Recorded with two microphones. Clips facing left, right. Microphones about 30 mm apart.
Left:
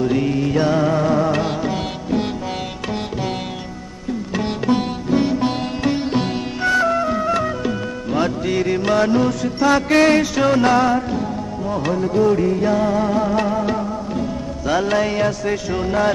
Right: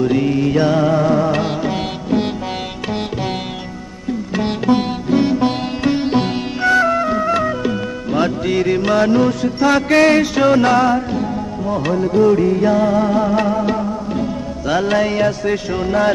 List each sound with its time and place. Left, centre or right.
0.0 s music: centre
4.7 s sitar: centre
15.7 s speech: centre